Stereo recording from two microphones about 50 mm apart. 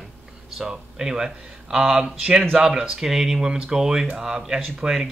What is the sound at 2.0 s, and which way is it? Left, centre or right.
Speech, centre.